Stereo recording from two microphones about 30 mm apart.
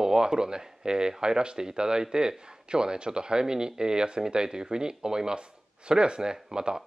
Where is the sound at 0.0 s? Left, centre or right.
Right.